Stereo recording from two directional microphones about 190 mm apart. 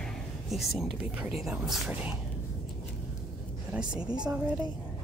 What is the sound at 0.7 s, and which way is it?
Speech, 5° right (ahead or behind).